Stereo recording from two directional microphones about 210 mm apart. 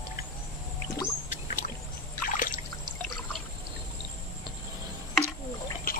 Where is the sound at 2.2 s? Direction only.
40° left (ahead or behind).